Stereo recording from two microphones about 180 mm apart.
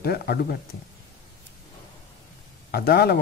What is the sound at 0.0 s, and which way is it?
Speech, 60° left (ahead or behind).